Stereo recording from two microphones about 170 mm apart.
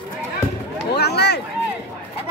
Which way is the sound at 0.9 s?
75° left (ahead or behind).